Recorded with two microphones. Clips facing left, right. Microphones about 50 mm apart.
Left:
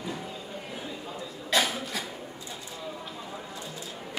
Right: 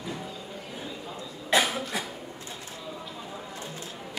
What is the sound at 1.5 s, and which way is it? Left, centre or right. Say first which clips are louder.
Cough: right 2 dB; centre.